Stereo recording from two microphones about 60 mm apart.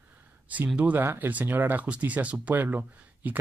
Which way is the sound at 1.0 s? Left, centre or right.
Right.